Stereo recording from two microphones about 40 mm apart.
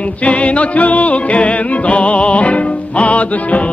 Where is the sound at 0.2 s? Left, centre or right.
Left.